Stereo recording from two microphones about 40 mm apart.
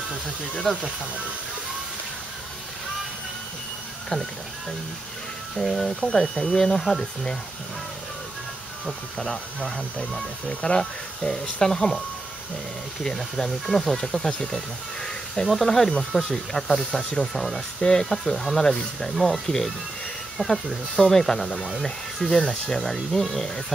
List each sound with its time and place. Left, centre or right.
0.7 s speech: centre
4.1 s speech: centre
5.7 s speech: centre
6.3 s speech: centre
6.8 s speech: centre
9.2 s speech: left
13.0 s speech: centre
16.1 s speech: centre